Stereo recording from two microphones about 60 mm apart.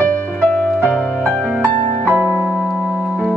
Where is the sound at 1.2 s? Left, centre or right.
Right.